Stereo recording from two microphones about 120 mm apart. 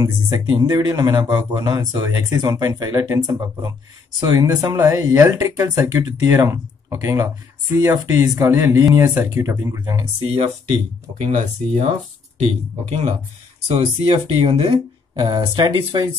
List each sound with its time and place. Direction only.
0.0 s speech: 25° right (ahead or behind)
10.2 s speech: 55° right (ahead or behind)
11.3 s speech: 90° right
13.7 s speech: 55° right (ahead or behind); by 16.1 s 40° right (ahead or behind)